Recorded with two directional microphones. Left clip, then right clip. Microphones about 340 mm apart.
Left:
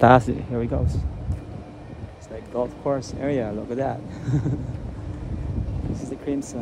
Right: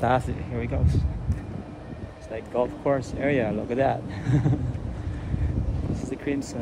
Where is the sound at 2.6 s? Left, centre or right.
Centre.